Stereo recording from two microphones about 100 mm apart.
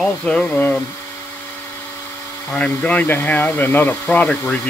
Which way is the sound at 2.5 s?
15° left (ahead or behind).